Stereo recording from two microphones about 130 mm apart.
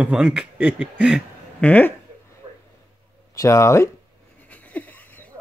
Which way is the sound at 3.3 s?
25° left (ahead or behind).